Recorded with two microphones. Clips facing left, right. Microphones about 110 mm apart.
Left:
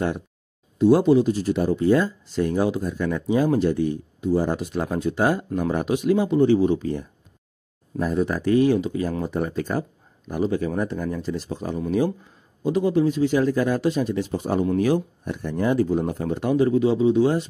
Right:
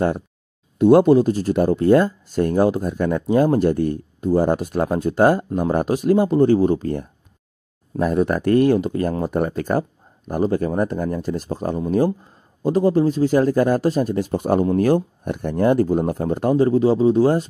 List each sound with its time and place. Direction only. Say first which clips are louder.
0.7 s speech: right 4 dB; 55° right (ahead or behind)
8.0 s speech: right 4 dB; 60° right (ahead or behind); by 17.5 s 40° right (ahead or behind)